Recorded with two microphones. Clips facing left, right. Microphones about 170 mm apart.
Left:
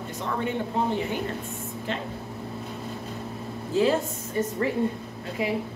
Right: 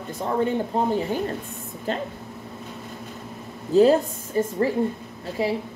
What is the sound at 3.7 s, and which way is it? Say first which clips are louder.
Speech: right 7 dB; 35° right (ahead or behind).